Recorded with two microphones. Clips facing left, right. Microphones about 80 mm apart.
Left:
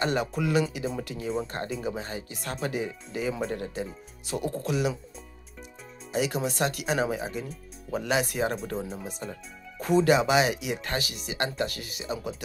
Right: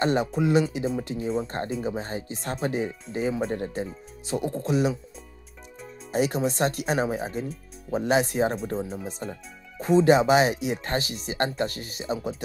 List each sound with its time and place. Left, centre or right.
0.0 s speech: right
6.1 s speech: right
8.7 s speech: centre
9.8 s speech: right